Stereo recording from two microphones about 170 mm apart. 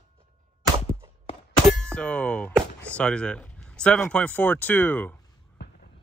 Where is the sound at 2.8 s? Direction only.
5° left (ahead or behind).